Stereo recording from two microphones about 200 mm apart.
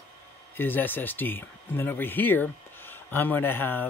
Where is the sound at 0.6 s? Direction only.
10° left (ahead or behind).